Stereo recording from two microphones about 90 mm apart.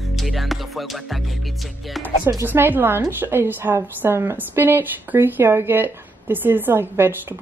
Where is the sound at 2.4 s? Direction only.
20° right (ahead or behind).